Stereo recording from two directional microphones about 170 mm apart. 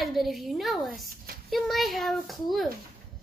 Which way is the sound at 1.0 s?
60° right (ahead or behind).